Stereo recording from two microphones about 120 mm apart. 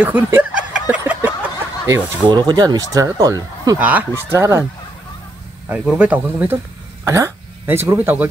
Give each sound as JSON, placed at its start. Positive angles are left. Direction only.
{"t": 0.0, "sound": "a sound", "side_deg": -15}
{"t": 2.2, "sound": "speech", "side_deg": -35}
{"t": 3.7, "sound": "speech", "side_deg": -15}
{"t": 5.7, "sound": "speech", "side_deg": -10}